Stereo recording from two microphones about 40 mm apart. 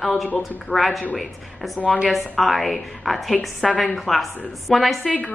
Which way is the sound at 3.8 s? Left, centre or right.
Centre.